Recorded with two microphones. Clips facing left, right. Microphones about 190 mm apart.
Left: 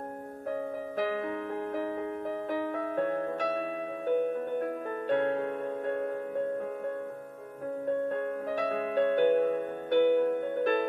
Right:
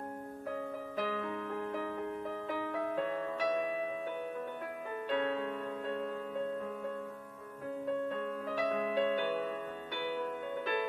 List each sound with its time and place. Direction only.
1.5 s music: 50° left (ahead or behind)
8.1 s music: 60° left (ahead or behind)